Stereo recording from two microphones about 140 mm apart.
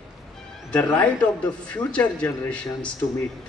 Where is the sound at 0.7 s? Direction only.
10° left (ahead or behind).